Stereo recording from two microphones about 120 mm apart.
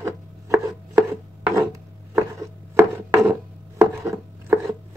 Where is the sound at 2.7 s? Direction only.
20° right (ahead or behind).